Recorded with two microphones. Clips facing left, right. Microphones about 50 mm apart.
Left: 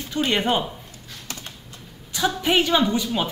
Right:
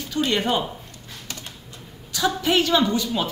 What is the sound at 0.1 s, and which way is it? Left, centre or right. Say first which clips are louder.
Speech: left 1 dB; left.